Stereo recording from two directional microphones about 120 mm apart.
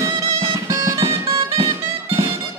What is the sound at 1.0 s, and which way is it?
Music, 50° right (ahead or behind).